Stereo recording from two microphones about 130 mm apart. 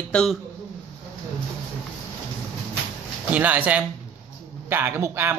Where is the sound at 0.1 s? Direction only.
5° left (ahead or behind).